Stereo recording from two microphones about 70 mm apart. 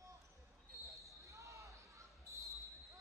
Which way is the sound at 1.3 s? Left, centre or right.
Right.